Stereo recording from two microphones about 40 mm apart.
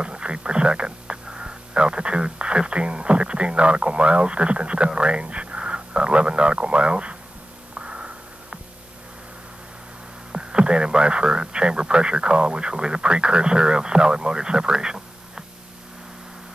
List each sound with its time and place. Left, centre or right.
0.0 s speech: right
7.7 s a sound: right
10.3 s speech: right